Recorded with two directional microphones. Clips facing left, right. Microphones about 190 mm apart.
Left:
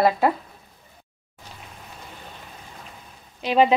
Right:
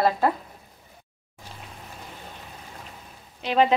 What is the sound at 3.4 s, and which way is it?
Speech, 15° left (ahead or behind).